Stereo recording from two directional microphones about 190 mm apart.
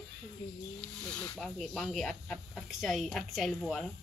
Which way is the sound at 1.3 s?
Centre (ahead or behind).